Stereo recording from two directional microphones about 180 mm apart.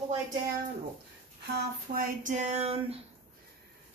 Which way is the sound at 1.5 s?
55° right (ahead or behind).